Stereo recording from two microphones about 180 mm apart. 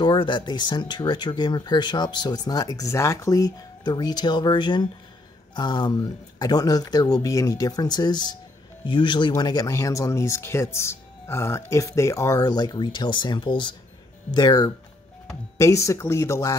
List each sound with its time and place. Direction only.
0.0 s speech: 25° left (ahead or behind)